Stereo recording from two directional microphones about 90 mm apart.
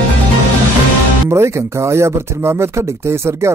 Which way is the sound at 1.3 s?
30° right (ahead or behind).